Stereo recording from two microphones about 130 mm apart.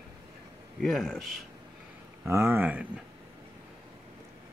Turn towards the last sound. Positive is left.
turn(degrees=-10)  # may be behind; listen again after turning